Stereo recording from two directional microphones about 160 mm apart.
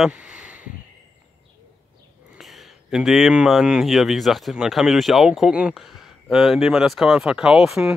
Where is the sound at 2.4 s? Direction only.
Centre (ahead or behind).